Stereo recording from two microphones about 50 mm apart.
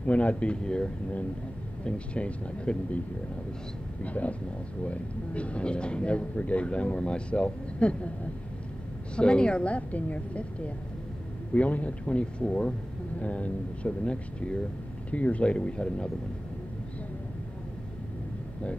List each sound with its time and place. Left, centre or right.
0.0 s speech: left
1.9 s speech: left
4.0 s speech: left
9.1 s speech: centre
13.2 s speech: left